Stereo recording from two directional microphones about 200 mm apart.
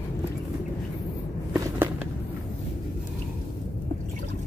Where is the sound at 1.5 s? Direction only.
15° right (ahead or behind).